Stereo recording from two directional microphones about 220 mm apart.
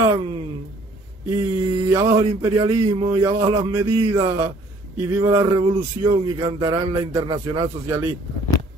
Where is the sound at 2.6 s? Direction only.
20° right (ahead or behind).